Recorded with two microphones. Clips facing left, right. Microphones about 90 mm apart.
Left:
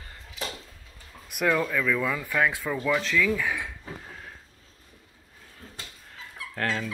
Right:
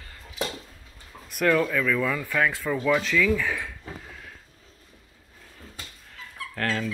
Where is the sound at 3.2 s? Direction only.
10° left (ahead or behind).